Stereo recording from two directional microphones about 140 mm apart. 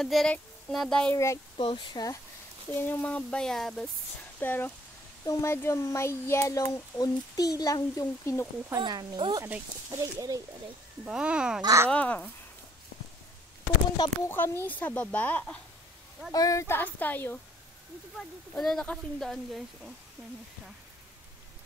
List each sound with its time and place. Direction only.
0.0 s speech: centre (ahead or behind)
1.1 s speech: 20° left (ahead or behind)
1.6 s speech: 40° left (ahead or behind)
2.7 s speech: 15° left (ahead or behind)
8.6 s speech: 30° right (ahead or behind)
9.4 s speech: 20° right (ahead or behind)
11.1 s speech: 5° right (ahead or behind)
11.6 s speech: 20° right (ahead or behind)
11.9 s speech: 10° left (ahead or behind)
13.9 s speech: 30° left (ahead or behind)
14.3 s speech: 15° left (ahead or behind)
16.3 s speech: 25° left (ahead or behind)
18.5 s speech: 5° left (ahead or behind)
20.2 s speech: 20° right (ahead or behind)